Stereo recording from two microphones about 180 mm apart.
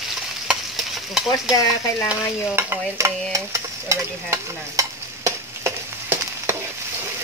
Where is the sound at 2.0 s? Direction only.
15° right (ahead or behind).